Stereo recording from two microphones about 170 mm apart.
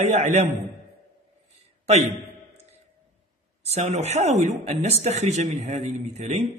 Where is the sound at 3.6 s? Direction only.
40° right (ahead or behind).